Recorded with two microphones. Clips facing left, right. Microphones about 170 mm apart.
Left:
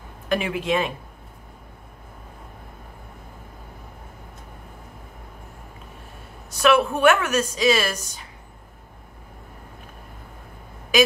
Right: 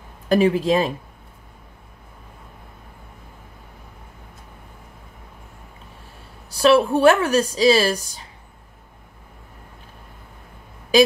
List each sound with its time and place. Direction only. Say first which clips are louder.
0.3 s a woman's voice: right 6 dB; 35° right (ahead or behind)
6.5 s a woman's voice: right 3 dB; 35° right (ahead or behind)